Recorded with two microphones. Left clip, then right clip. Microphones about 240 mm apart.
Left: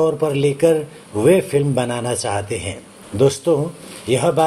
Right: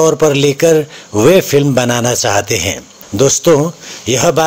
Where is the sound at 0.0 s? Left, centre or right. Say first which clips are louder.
Right 7 dB; right.